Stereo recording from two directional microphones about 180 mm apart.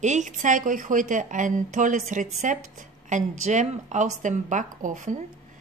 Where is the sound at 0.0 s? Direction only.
40° right (ahead or behind).